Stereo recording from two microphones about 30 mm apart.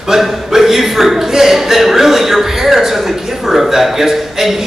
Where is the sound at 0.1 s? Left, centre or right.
Centre.